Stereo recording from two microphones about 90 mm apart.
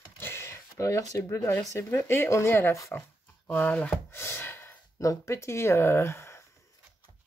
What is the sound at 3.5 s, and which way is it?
Speech, 15° left (ahead or behind).